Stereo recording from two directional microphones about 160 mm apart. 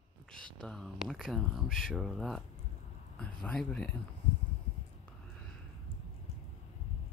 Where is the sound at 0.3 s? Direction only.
5° left (ahead or behind).